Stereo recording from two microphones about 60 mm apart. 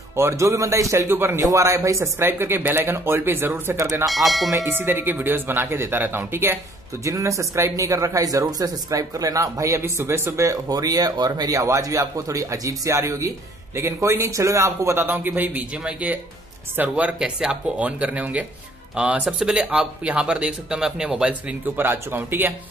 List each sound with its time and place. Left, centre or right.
0.1 s speech: right
1.0 s speech: right
1.4 s speech: right
2.2 s speech: right
4.1 s speech: centre
4.6 s speech: right
7.1 s speech: right
15.0 s speech: right
17.2 s speech: centre
17.7 s speech: right
21.7 s speech: right